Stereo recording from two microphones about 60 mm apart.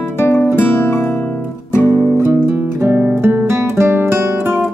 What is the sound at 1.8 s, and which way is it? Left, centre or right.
Music, right.